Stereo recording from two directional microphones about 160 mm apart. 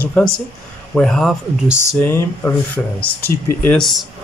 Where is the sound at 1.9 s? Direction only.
15° left (ahead or behind).